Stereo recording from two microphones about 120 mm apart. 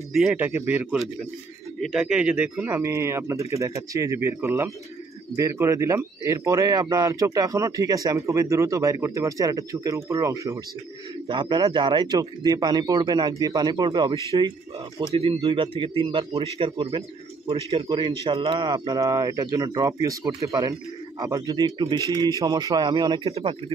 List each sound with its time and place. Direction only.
0.1 s speech: 5° right (ahead or behind)
0.4 s speech: 15° right (ahead or behind)
11.2 s speech: 40° right (ahead or behind)
14.3 s speech: 50° right (ahead or behind)